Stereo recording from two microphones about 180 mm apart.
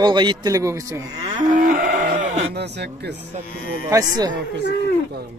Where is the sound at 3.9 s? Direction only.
20° right (ahead or behind).